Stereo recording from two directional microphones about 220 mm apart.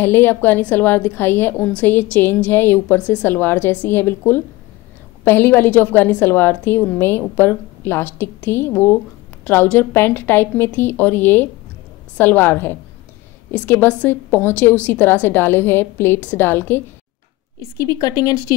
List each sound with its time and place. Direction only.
0.0 s a woman's voice: 10° left (ahead or behind)